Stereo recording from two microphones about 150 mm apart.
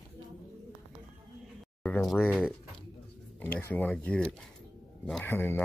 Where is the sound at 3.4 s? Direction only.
10° left (ahead or behind).